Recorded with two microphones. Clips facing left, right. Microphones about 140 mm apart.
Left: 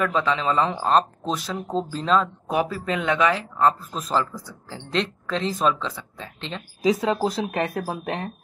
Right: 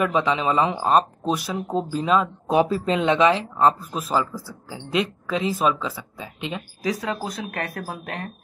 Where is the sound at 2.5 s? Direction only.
25° right (ahead or behind).